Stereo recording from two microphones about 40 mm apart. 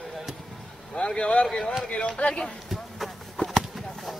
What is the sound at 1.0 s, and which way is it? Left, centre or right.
Speech, left.